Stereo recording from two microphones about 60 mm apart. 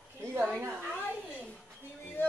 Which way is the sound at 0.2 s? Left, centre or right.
Right.